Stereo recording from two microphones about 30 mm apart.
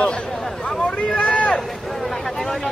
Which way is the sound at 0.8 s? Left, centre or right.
Left.